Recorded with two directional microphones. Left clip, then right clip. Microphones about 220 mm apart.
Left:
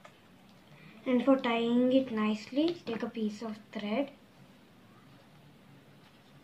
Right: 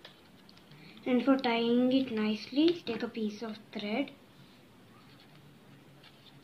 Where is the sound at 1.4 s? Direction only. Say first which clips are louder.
Even; 40° left (ahead or behind).